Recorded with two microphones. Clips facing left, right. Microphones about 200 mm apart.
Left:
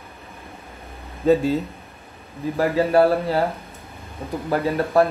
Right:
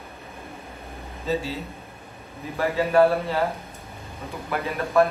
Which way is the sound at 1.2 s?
50° left (ahead or behind).